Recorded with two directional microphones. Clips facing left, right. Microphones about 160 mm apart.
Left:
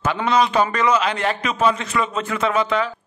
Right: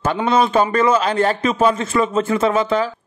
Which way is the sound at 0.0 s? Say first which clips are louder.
Right 2 dB; 30° right (ahead or behind).